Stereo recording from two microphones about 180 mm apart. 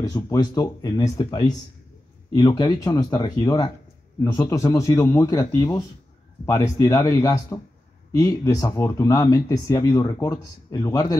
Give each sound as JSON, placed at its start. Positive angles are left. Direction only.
{"t": 0.1, "sound": "speech", "side_deg": 20}